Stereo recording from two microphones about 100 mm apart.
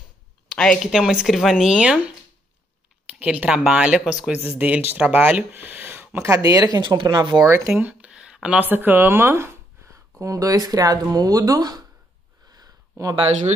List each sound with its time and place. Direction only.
0.5 s a sound: 10° left (ahead or behind)
0.9 s speech: 5° right (ahead or behind)
3.1 s speech: 10° right (ahead or behind); by 6.8 s 35° right (ahead or behind)
6.8 s speech: 50° right (ahead or behind)
7.4 s speech: 25° right (ahead or behind)
7.8 s speech: 10° right (ahead or behind); by 11.8 s 40° right (ahead or behind)
12.4 s a sound: 40° right (ahead or behind)